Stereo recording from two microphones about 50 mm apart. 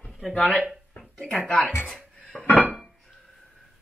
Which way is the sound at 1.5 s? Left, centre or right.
Left.